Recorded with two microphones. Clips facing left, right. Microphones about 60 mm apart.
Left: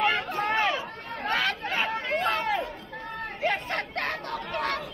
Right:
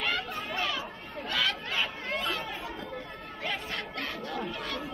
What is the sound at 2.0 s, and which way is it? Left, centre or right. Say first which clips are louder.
Chatter: left 6 dB; left.